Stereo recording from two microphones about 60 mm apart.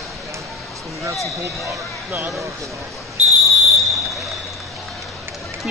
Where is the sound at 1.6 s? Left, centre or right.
Right.